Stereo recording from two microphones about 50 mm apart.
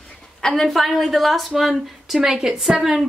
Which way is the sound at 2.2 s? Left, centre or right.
Centre.